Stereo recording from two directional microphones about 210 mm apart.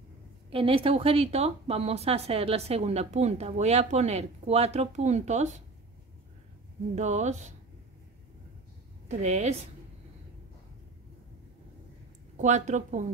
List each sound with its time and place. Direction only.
0.5 s speech: 25° right (ahead or behind)
7.0 s speech: 35° right (ahead or behind)
9.1 s speech: 35° right (ahead or behind)
12.4 s speech: 35° right (ahead or behind)